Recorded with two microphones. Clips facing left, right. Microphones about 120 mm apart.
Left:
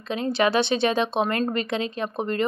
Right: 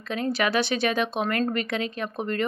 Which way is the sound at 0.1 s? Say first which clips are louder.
Left 3 dB; 25° left (ahead or behind).